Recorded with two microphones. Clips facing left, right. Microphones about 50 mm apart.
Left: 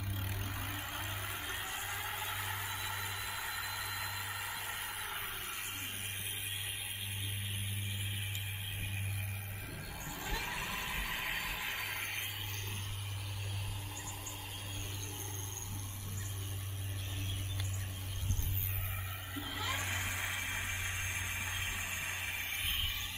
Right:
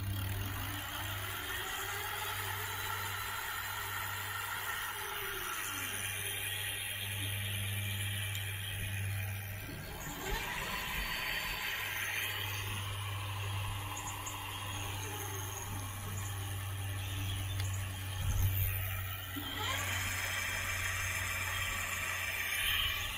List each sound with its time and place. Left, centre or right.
0.6 s music: centre
4.2 s vehicle: centre
10.2 s vehicle: centre
19.3 s music: centre
20.0 s vehicle: centre
20.4 s a sound: right
20.9 s vehicle: right
21.5 s vehicle: centre
22.4 s a sound: right